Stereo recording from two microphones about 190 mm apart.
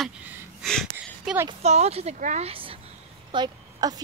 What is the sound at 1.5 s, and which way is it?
A woman's voice, 35° right (ahead or behind).